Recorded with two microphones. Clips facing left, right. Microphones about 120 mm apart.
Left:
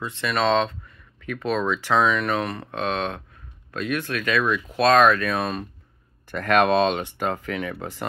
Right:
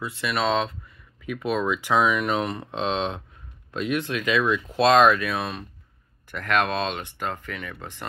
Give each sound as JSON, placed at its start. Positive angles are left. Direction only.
{"t": 0.0, "sound": "speech", "side_deg": -10}
{"t": 5.3, "sound": "speech", "side_deg": 0}